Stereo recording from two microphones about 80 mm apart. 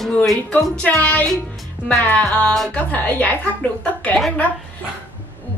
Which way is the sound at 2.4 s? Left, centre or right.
Centre.